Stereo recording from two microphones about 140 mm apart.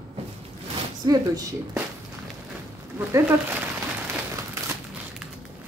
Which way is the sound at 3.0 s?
20° right (ahead or behind).